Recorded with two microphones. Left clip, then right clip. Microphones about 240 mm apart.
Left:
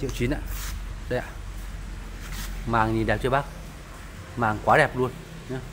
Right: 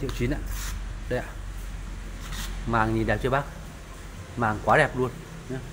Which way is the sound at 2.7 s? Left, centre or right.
Centre.